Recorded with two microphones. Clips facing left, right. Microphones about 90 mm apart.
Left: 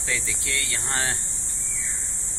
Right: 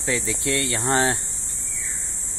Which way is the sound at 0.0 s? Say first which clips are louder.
Right 6 dB; 30° right (ahead or behind).